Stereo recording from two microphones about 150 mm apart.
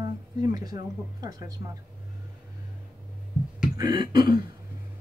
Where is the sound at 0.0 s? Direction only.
25° right (ahead or behind).